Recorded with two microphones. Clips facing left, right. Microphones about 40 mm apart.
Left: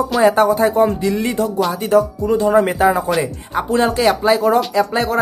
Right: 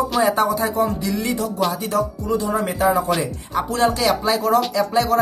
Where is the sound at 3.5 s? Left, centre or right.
Left.